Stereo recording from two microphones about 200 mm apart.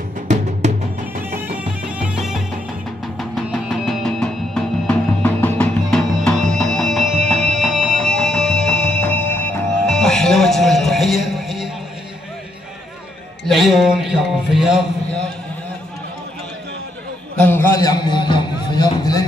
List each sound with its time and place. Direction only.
0.3 s music: 35° right (ahead or behind)
1.3 s music: 5° right (ahead or behind)
13.5 s music: centre (ahead or behind)
17.4 s a sound: 10° left (ahead or behind)